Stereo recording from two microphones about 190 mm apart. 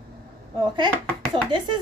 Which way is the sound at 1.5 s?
25° right (ahead or behind).